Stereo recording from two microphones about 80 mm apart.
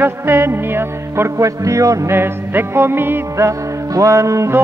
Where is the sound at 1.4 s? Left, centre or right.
Right.